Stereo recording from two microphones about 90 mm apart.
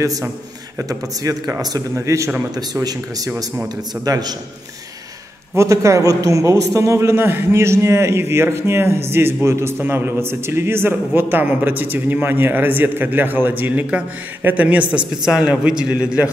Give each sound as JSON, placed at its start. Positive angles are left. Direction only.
{"t": 0.7, "sound": "speech", "side_deg": -40}
{"t": 2.5, "sound": "speech", "side_deg": -45}
{"t": 5.6, "sound": "a man's voice", "side_deg": -35}